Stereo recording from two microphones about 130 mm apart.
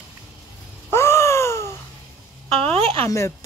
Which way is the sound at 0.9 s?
20° left (ahead or behind).